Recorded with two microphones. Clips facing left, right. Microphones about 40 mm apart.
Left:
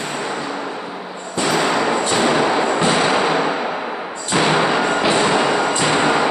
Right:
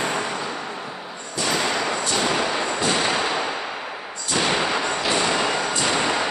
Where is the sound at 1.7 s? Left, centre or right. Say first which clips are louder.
Left 6 dB; left.